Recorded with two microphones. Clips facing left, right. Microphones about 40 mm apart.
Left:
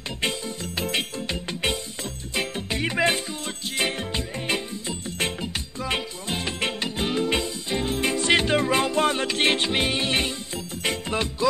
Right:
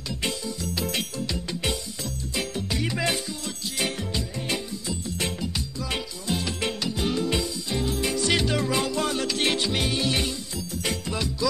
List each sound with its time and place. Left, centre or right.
0.2 s music: left